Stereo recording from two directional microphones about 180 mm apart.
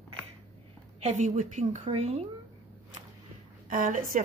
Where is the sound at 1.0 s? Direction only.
40° right (ahead or behind).